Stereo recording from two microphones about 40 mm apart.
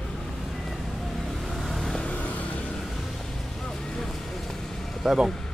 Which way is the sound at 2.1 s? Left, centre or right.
Left.